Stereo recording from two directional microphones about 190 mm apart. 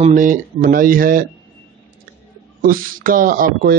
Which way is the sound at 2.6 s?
50° right (ahead or behind).